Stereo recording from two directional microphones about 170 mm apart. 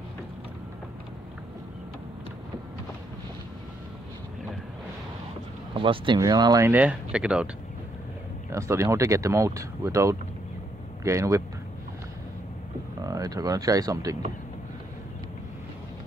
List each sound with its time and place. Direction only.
5.8 s speech: 30° right (ahead or behind)
6.7 s speech: 10° right (ahead or behind)
8.5 s speech: 15° right (ahead or behind)
13.0 s speech: 20° right (ahead or behind)